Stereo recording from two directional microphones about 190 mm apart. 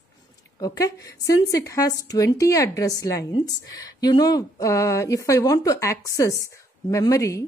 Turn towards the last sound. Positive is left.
turn(degrees=15)  # may be behind; listen again after turning